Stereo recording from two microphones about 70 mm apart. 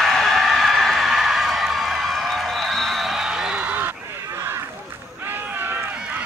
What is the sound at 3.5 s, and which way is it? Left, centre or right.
Goose, right.